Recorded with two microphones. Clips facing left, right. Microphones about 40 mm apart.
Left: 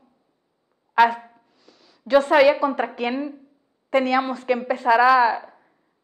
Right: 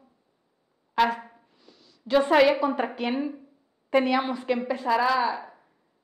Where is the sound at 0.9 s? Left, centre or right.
Centre.